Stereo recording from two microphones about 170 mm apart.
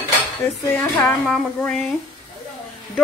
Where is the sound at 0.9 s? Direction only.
5° left (ahead or behind).